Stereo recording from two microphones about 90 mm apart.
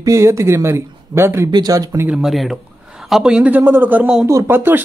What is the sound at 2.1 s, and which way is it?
A man's voice, 5° right (ahead or behind).